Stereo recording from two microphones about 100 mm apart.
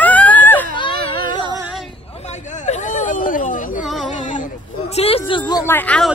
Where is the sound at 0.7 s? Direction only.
50° left (ahead or behind).